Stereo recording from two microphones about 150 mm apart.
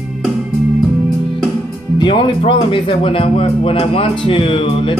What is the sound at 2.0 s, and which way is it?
Speech, 35° left (ahead or behind).